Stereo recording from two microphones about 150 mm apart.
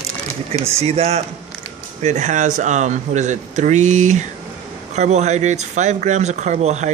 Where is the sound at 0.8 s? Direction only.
45° right (ahead or behind).